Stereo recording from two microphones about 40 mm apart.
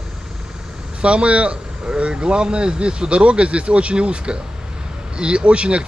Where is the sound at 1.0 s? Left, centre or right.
Right.